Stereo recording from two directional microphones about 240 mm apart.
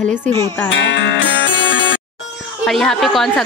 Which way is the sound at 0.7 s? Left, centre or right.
Left.